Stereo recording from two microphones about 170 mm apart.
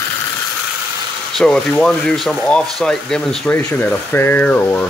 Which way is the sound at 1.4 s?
5° left (ahead or behind).